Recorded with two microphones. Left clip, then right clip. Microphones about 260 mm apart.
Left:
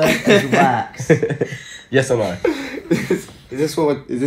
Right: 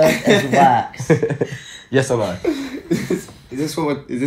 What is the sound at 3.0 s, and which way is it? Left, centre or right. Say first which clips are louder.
Speech: left 2 dB; centre.